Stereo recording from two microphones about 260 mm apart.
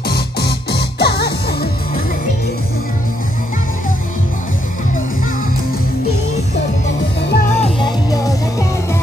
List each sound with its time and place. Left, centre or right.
0.1 s music: left
7.2 s music: left
7.6 s music: centre